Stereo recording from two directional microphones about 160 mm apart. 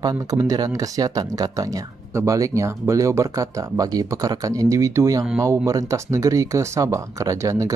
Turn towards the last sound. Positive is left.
turn(degrees=-20)  # may be behind; listen again after turning